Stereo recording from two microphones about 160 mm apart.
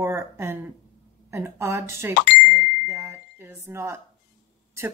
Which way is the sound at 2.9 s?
15° right (ahead or behind).